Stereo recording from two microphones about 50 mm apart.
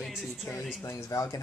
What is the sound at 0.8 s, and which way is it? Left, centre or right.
Speech, left.